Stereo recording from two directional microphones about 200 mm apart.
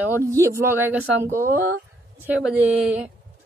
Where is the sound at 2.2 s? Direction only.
5° right (ahead or behind).